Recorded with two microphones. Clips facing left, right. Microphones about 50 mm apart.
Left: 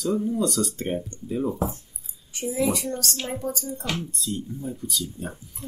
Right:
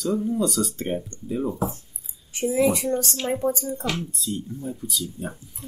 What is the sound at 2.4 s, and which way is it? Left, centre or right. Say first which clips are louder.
Speech: right 4 dB; right.